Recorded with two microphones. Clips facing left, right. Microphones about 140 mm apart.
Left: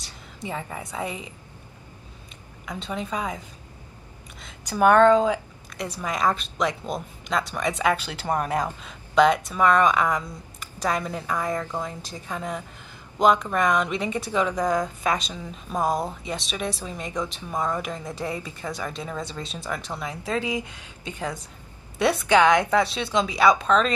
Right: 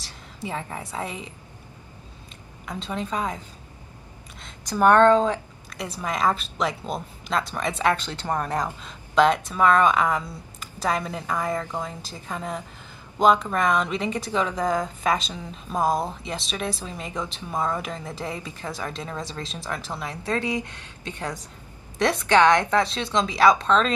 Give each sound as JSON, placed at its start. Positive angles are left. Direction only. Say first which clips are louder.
{"t": 0.6, "sound": "a woman's voice", "louder": "left 1 dB", "side_deg": 5}
{"t": 2.6, "sound": "a woman's voice", "louder": "right 1 dB", "side_deg": 5}
{"t": 4.4, "sound": "a woman's voice", "louder": "even", "side_deg": 5}
{"t": 11.2, "sound": "a woman's voice", "louder": "right 1 dB", "side_deg": -5}
{"t": 14.5, "sound": "a woman's voice", "louder": "left 1 dB", "side_deg": 0}